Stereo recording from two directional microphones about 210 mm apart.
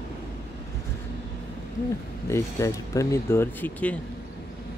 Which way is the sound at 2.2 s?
15° left (ahead or behind).